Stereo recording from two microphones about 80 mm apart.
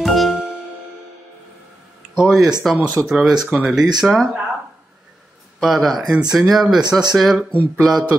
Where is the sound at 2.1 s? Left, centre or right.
Centre.